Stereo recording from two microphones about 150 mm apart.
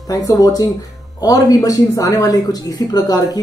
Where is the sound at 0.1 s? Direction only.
25° left (ahead or behind).